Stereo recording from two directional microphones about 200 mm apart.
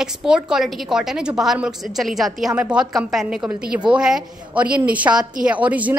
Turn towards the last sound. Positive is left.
turn(degrees=-5)  # may be behind; listen again after turning